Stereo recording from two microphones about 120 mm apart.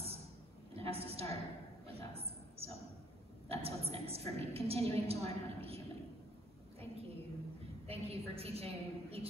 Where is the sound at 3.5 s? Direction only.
55° right (ahead or behind).